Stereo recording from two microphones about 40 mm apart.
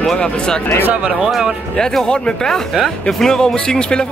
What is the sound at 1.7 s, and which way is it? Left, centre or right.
Speech, centre.